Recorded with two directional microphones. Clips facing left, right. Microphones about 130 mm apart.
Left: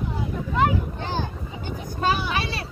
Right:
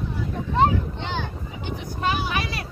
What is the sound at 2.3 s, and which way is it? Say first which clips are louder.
Speech: even; 30° left (ahead or behind).